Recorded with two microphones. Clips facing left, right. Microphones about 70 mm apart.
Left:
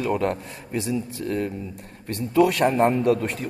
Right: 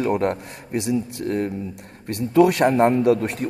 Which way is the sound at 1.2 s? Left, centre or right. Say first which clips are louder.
Right 3 dB; right.